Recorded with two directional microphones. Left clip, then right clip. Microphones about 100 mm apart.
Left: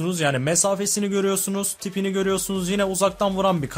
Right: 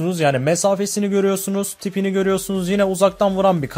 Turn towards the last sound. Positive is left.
turn(degrees=-35)  # may be behind; listen again after turning